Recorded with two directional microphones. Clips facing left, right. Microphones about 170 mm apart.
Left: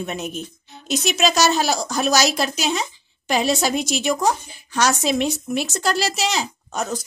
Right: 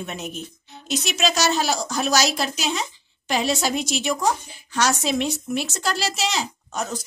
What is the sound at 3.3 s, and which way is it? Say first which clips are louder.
A woman's voice: left 3 dB; 45° left (ahead or behind).